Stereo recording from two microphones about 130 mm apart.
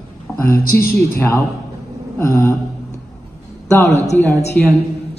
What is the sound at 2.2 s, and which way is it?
Mantra, 20° left (ahead or behind).